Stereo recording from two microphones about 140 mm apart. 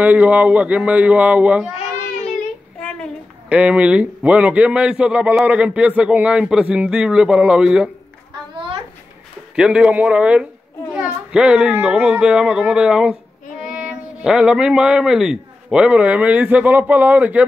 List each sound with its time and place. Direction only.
0.0 s a man's voice: 10° right (ahead or behind)
3.4 s a man's voice: 10° right (ahead or behind)
8.5 s a sound: 40° right (ahead or behind)
9.6 s a man's voice: 10° right (ahead or behind)